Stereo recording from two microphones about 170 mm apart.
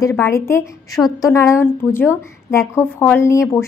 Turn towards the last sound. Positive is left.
turn(degrees=15)  # may be behind; listen again after turning